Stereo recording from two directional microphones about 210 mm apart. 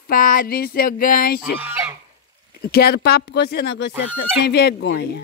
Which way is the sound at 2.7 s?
50° left (ahead or behind).